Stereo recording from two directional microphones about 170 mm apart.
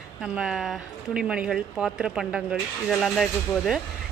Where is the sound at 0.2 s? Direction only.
5° right (ahead or behind).